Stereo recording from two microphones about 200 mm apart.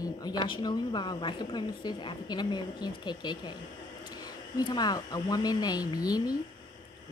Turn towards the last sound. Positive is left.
turn(degrees=20)  # may be behind; listen again after turning